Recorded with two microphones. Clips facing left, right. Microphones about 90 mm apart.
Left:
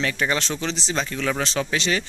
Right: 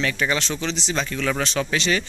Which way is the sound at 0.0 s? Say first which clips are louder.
Even; 35° left (ahead or behind).